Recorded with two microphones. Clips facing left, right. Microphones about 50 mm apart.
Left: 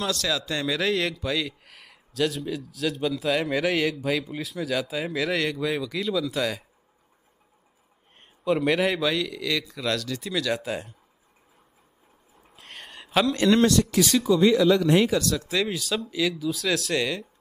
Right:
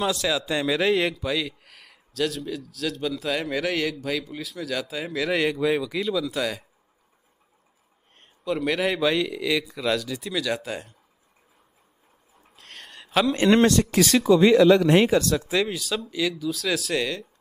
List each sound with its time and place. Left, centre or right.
0.0 s speech: centre
8.2 s speech: centre
12.5 s a sound: centre
13.4 s a man's voice: right
13.7 s speech: right
13.9 s speech: right
15.0 s speech: right
15.6 s speech: centre